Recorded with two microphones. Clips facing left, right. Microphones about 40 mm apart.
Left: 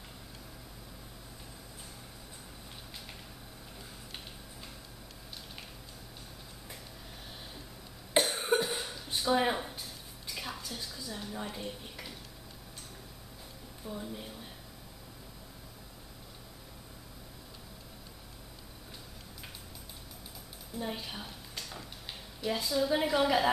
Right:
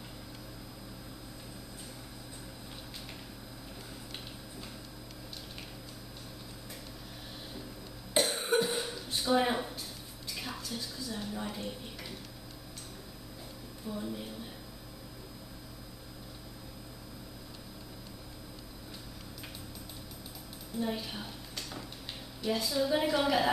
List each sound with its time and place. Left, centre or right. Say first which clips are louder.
8.2 s cough: even; centre
10.2 s dishes: even; centre
13.8 s speech: right 2 dB; centre
20.7 s a sound: right 3 dB; centre
22.4 s a woman's voice: even; centre